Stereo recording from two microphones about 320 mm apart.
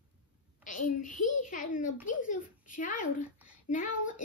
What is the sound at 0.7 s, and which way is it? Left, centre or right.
A woman's voice, left.